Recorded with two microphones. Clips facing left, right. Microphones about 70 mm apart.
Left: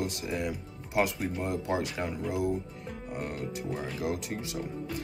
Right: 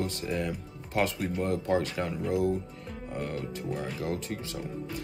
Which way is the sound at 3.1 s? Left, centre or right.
Centre.